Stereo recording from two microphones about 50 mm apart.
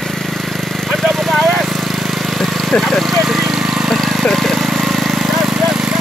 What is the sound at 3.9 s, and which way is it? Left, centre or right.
Vehicle, centre.